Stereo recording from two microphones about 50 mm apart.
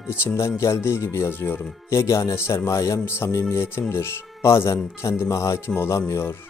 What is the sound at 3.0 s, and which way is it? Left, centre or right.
Speech, left.